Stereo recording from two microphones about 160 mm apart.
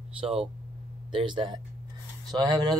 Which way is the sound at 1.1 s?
30° right (ahead or behind).